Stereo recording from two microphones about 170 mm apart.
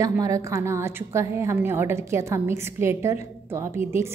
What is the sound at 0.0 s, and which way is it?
A woman's voice, 20° right (ahead or behind).